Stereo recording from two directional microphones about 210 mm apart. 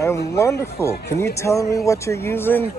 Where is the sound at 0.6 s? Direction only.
10° left (ahead or behind).